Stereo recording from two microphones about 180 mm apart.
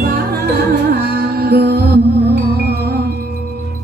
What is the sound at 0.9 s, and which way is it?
Music, 60° right (ahead or behind).